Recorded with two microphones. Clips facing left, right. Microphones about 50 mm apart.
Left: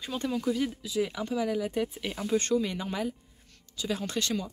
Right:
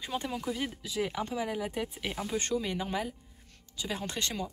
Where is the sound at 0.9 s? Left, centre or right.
Right.